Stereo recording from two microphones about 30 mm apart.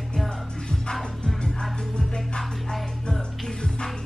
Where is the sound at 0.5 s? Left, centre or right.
Left.